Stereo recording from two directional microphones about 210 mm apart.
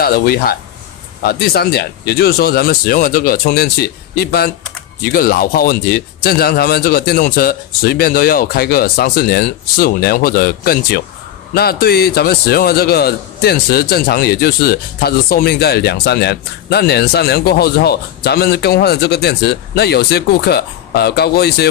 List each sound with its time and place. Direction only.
0.0 s a man's voice: 45° left (ahead or behind)